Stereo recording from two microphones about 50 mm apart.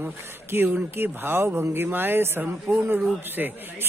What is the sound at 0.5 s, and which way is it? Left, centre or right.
Speech, right.